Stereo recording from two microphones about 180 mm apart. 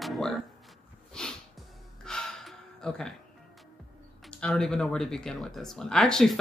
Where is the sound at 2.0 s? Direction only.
5° left (ahead or behind).